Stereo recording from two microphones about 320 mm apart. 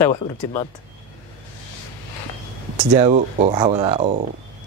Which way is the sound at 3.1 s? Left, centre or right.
Right.